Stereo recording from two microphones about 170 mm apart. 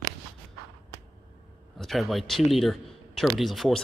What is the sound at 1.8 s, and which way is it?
Speech, centre (ahead or behind).